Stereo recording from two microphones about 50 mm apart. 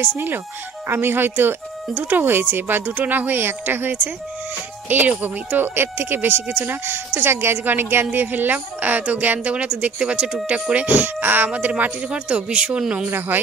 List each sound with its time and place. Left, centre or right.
0.0 s a woman's voice: right
10.9 s a woman's voice: right
12.1 s speech: right